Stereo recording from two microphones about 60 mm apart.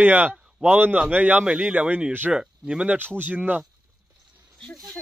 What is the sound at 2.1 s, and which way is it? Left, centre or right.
Speech, right.